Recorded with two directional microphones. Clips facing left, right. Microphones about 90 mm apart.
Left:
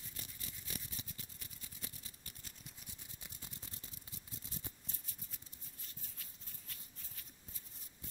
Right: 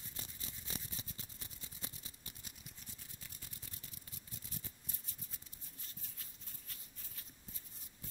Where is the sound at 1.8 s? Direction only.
25° right (ahead or behind).